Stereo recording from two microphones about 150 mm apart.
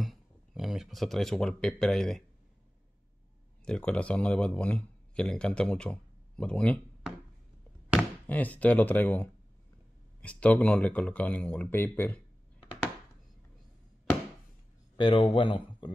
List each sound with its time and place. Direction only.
0.0 s speech: centre (ahead or behind)
3.6 s speech: 5° left (ahead or behind)
8.3 s speech: 10° left (ahead or behind)
15.0 s speech: 35° left (ahead or behind)